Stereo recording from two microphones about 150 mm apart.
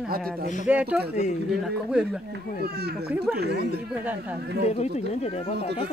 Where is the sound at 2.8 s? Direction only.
90° right.